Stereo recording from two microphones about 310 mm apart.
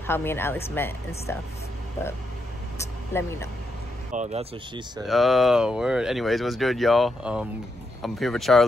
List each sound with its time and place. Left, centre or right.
0.0 s speech: centre
2.8 s speech: centre
4.1 s speech: right
5.0 s speech: centre